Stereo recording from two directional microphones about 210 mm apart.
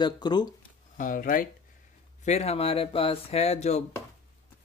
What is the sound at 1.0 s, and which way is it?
Speech, 40° left (ahead or behind).